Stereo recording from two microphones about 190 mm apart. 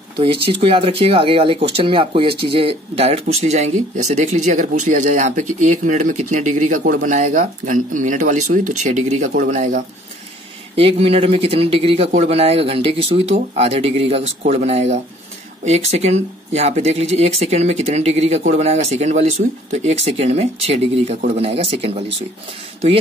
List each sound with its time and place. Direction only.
0.2 s speech: 30° right (ahead or behind)
10.8 s speech: 30° right (ahead or behind)